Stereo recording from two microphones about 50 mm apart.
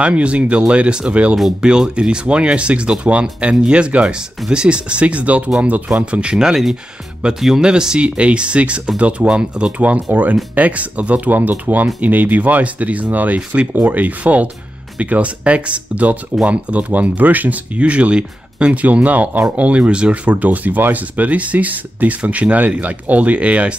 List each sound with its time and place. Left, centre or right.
0.0 s speech: right
6.1 s speech: centre